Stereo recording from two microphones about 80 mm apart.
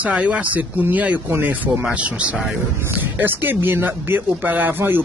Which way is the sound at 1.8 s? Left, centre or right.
Centre.